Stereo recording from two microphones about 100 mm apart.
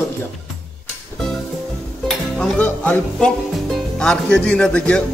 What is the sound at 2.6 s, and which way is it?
Speech, 10° left (ahead or behind).